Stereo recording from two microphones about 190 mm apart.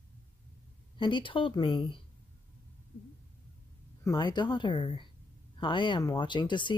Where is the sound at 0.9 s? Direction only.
25° left (ahead or behind).